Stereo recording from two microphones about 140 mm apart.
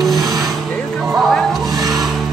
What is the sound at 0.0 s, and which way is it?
Vehicle, centre (ahead or behind).